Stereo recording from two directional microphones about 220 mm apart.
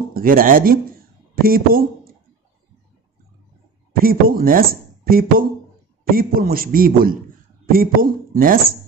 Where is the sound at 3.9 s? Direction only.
40° right (ahead or behind).